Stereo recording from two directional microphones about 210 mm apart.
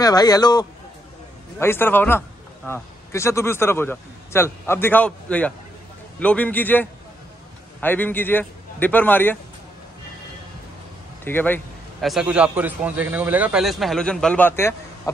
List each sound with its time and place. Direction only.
0.0 s a man's voice: 20° left (ahead or behind)
11.2 s a man's voice: 10° left (ahead or behind)